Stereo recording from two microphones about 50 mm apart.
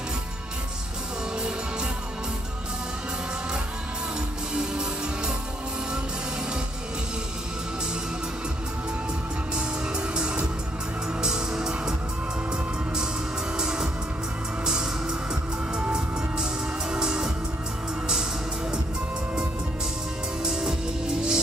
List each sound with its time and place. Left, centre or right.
4.6 s music: centre
9.6 s music: centre
13.6 s music: centre
20.4 s music: centre